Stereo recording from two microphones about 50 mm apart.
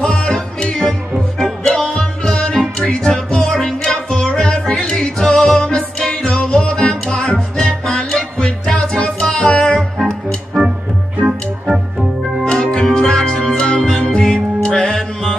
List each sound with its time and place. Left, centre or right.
0.0 s music: centre
10.6 s music: centre
11.6 s organ: centre
12.7 s music: centre